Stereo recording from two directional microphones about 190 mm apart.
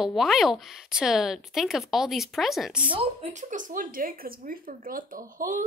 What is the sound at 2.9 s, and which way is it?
Speech, 35° right (ahead or behind).